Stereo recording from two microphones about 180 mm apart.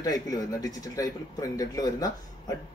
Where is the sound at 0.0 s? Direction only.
20° left (ahead or behind).